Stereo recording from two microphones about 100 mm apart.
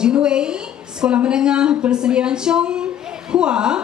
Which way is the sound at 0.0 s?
10° right (ahead or behind).